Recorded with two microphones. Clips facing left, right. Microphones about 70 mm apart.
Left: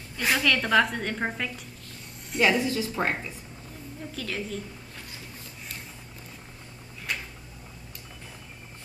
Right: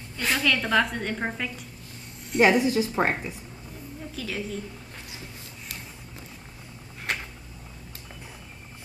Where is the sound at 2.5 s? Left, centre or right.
Centre.